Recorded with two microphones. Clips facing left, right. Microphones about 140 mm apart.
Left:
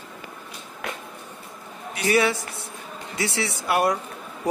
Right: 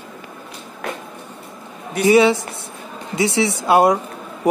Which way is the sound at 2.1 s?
20° right (ahead or behind).